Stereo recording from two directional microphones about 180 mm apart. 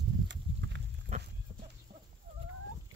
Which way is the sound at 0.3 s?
80° right.